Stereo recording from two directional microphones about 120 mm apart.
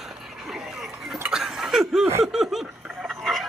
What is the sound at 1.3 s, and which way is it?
Chink, 5° right (ahead or behind).